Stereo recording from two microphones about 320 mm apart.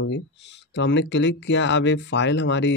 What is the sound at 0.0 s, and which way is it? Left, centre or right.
Speech, left.